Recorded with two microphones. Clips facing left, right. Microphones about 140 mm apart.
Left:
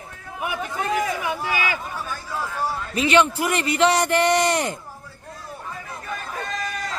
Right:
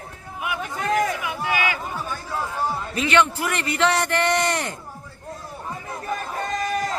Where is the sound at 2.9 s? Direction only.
15° left (ahead or behind).